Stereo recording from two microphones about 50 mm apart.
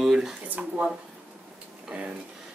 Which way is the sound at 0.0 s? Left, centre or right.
Centre.